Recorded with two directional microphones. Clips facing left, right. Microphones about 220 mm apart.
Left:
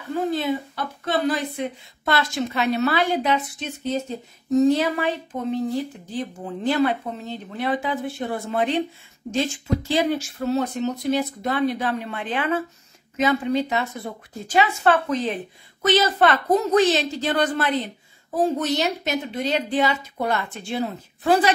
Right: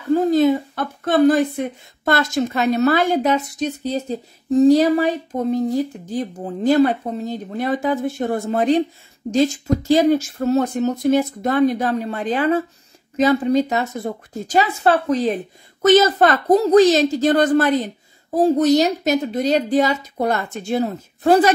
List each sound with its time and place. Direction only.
0.1 s a woman's voice: 40° right (ahead or behind)